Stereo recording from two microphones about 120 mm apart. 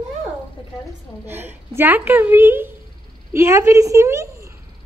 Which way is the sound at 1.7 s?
15° right (ahead or behind).